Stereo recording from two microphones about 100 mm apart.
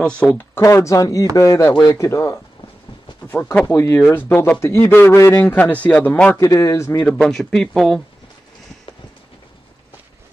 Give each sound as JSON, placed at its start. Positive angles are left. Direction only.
{"t": 0.0, "sound": "speech", "side_deg": 10}
{"t": 0.6, "sound": "speech", "side_deg": 30}
{"t": 2.0, "sound": "speech", "side_deg": 25}
{"t": 3.6, "sound": "speech", "side_deg": 30}
{"t": 5.4, "sound": "speech", "side_deg": 15}
{"t": 6.4, "sound": "speech", "side_deg": 35}
{"t": 7.1, "sound": "speech", "side_deg": 5}